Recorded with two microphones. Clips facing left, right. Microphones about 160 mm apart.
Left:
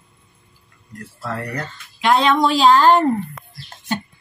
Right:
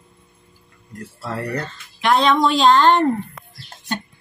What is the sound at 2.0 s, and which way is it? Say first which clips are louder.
A woman's voice: even; 10° left (ahead or behind).